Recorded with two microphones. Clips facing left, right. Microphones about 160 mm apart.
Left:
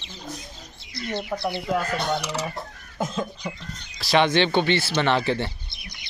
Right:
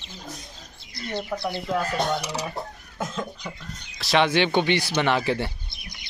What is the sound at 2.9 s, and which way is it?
Cough, 15° left (ahead or behind).